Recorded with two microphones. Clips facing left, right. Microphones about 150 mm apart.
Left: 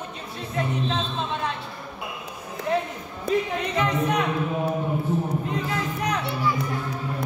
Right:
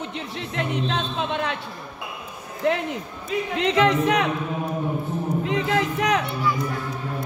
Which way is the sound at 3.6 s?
90° right.